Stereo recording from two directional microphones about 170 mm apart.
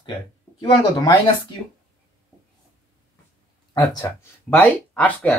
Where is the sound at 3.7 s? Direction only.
20° left (ahead or behind).